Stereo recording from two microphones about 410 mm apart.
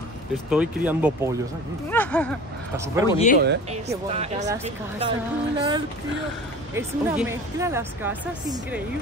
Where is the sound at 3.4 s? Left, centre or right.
Centre.